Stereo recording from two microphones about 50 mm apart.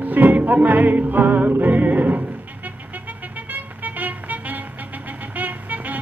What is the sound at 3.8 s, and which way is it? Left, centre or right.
Vehicle, right.